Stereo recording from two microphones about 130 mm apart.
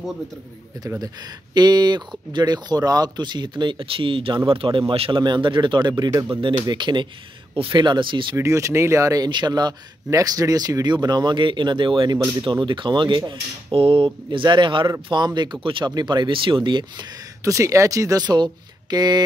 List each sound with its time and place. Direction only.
1.0 s a man's voice: 30° right (ahead or behind)
8.4 s a man's voice: 25° right (ahead or behind)
17.5 s speech: 25° right (ahead or behind)